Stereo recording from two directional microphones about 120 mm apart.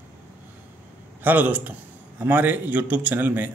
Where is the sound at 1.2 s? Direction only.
15° right (ahead or behind).